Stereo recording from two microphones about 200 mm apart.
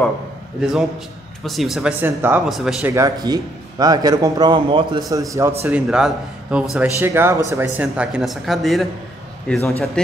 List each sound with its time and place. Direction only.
0.6 s a man's voice: centre (ahead or behind)
2.9 s a man's voice: 20° right (ahead or behind)
5.6 s a man's voice: 5° right (ahead or behind)